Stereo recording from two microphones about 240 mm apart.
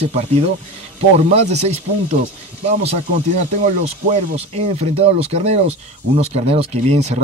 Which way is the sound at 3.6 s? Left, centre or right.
Right.